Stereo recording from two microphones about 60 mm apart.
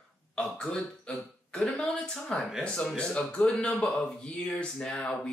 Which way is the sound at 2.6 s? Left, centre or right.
Centre.